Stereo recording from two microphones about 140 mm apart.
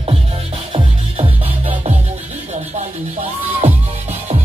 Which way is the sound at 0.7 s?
40° right (ahead or behind).